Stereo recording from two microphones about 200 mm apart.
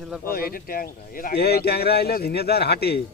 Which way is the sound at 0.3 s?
50° left (ahead or behind).